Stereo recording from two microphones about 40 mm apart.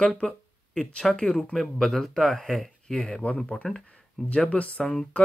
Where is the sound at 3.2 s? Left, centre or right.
Left.